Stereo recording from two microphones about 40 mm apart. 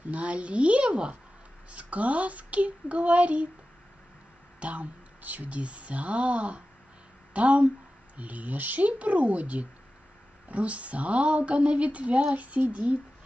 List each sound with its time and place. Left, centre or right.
0.0 s a woman's voice: right
4.6 s a woman's voice: right